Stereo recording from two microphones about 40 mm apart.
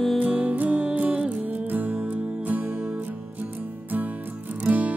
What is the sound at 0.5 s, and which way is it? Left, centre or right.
Music, right.